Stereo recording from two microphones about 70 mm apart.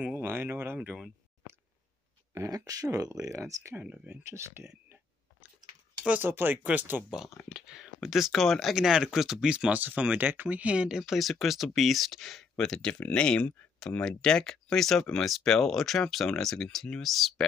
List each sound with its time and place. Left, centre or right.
0.0 s speech: right
2.3 s speech: right
3.8 s speech: centre
4.2 s speech: right
6.0 s speech: right
7.5 s speech: centre
9.8 s speech: right; by 17.5 s centre